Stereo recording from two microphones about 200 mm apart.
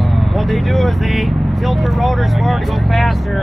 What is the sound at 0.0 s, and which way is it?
Speech, centre (ahead or behind).